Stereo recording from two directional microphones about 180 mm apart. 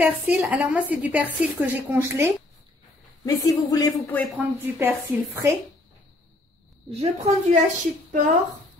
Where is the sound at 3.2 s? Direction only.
20° left (ahead or behind).